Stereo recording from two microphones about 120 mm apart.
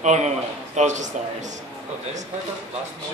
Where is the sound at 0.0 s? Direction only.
75° right (ahead or behind).